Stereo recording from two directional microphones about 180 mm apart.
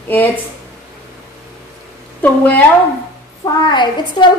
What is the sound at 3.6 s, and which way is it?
Speech, 25° left (ahead or behind).